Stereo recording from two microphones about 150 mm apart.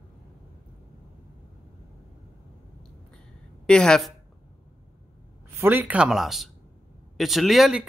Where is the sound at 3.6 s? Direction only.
5° left (ahead or behind).